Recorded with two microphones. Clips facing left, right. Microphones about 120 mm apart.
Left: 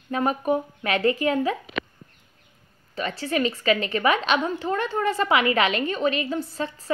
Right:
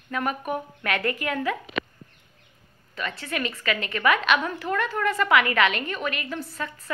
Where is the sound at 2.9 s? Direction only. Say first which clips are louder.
Left 5 dB; 30° left (ahead or behind).